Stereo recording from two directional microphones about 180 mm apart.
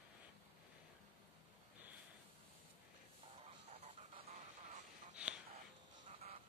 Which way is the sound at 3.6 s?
35° right (ahead or behind).